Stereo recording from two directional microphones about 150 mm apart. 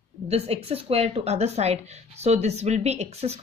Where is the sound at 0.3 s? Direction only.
40° right (ahead or behind).